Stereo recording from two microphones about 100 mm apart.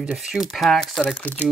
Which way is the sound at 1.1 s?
15° left (ahead or behind).